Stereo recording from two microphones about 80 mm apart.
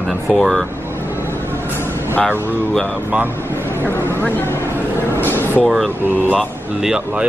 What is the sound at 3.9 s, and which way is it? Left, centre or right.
Speech, left.